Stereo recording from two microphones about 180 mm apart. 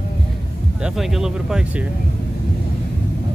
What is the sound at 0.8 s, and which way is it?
Speech, centre (ahead or behind).